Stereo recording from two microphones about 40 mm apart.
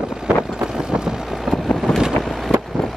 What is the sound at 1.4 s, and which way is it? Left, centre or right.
Boat, centre.